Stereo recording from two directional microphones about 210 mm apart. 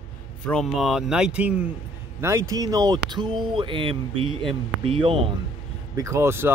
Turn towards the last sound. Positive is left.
turn(degrees=-10)  # may be behind; listen again after turning